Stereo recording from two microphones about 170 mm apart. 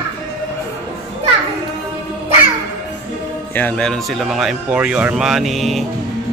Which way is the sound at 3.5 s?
10° left (ahead or behind).